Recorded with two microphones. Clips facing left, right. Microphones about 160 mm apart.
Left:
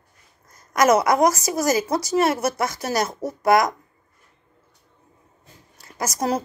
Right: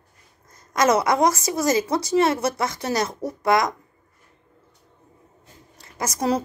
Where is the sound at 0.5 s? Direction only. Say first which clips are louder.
Left 2 dB; 25° right (ahead or behind).